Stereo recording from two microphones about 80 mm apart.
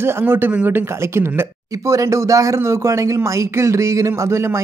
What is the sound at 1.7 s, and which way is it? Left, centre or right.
Speech, right.